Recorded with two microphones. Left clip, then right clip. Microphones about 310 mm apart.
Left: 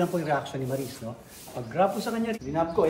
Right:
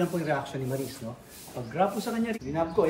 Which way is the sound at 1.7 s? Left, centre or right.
Centre.